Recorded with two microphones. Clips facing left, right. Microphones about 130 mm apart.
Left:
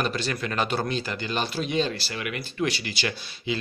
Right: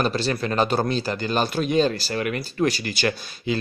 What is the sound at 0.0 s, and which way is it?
Speech, 30° right (ahead or behind).